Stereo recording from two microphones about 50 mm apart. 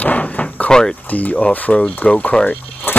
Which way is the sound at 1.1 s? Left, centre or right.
Left.